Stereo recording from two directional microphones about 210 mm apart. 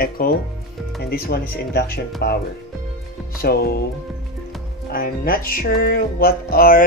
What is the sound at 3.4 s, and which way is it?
Music, 45° left (ahead or behind).